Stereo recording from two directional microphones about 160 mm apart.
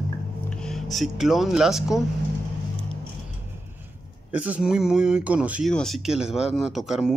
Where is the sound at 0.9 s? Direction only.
Centre (ahead or behind).